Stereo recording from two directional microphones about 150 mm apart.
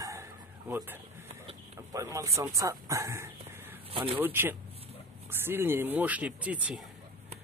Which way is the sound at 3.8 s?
40° right (ahead or behind).